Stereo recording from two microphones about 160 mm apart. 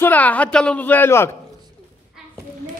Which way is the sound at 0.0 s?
10° left (ahead or behind).